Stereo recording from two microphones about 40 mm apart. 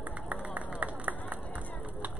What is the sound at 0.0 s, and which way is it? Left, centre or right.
Run, right.